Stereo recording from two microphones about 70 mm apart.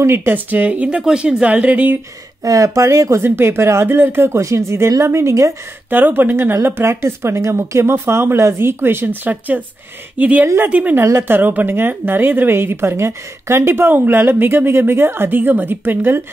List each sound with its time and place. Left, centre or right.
0.0 s speech: right
2.4 s a woman's voice: right
3.2 s a woman's voice: right
5.9 s a woman's voice: right
10.4 s a woman's voice: right
10.7 s a woman's voice: right